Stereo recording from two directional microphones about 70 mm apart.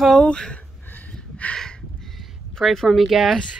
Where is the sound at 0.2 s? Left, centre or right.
Centre.